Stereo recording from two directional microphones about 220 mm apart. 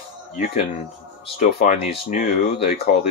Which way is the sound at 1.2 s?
30° left (ahead or behind).